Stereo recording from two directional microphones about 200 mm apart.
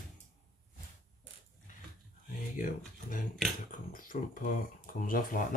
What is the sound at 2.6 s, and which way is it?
Speech, 40° left (ahead or behind).